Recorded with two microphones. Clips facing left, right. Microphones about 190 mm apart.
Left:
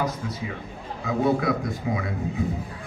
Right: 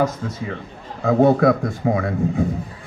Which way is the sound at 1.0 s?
50° right (ahead or behind).